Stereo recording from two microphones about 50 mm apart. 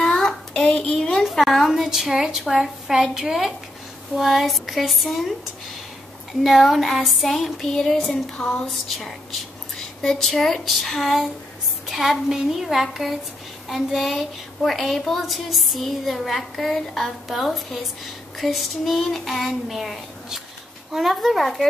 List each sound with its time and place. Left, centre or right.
0.2 s a sound: centre
1.2 s a woman's voice: centre
6.4 s a woman's voice: centre